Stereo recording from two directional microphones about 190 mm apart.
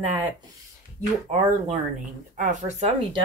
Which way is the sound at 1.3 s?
35° right (ahead or behind).